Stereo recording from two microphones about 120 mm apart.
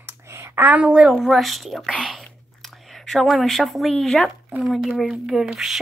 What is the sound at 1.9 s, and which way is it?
Whispering, 5° left (ahead or behind).